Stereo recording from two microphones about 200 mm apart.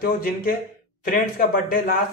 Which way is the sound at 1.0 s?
45° left (ahead or behind).